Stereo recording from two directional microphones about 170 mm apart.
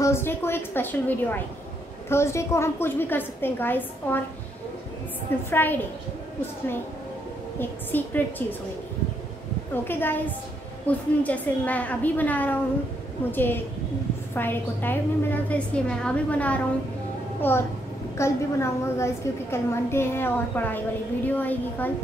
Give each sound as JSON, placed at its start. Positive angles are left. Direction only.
{"t": 0.0, "sound": "a woman's voice", "side_deg": 15}
{"t": 5.5, "sound": "a woman's voice", "side_deg": 10}
{"t": 7.5, "sound": "a woman's voice", "side_deg": 10}
{"t": 9.8, "sound": "a woman's voice", "side_deg": 10}